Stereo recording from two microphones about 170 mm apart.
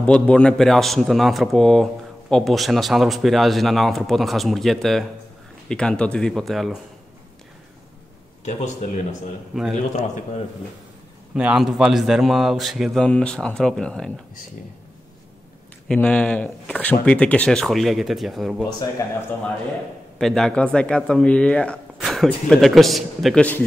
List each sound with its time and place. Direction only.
0.0 s speech: 5° left (ahead or behind)
8.5 s a man's voice: 40° left (ahead or behind)
9.5 s speech: 5° right (ahead or behind)
9.9 s a man's voice: 45° left (ahead or behind)
11.3 s speech: 5° right (ahead or behind)
15.9 s speech: 5° left (ahead or behind)
20.2 s speech: 5° left (ahead or behind)